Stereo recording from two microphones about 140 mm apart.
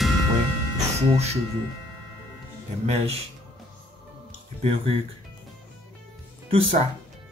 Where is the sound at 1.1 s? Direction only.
50° right (ahead or behind).